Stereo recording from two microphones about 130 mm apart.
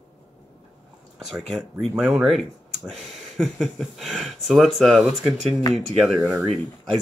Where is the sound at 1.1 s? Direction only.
Centre (ahead or behind).